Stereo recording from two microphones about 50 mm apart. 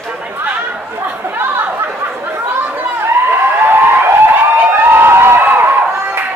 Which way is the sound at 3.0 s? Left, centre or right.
Right.